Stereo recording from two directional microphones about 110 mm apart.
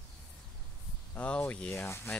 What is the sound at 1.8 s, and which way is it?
Speech, 20° left (ahead or behind).